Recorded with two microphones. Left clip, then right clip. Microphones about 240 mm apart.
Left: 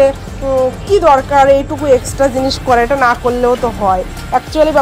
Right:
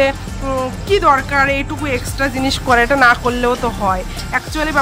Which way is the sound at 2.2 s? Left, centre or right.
Centre.